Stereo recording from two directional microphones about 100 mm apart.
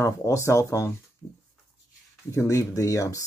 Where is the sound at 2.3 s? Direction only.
30° left (ahead or behind).